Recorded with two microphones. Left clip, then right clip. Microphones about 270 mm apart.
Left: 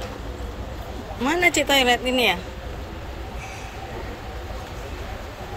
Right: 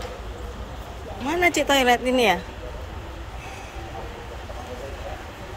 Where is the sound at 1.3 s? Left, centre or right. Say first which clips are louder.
Left 1 dB; centre.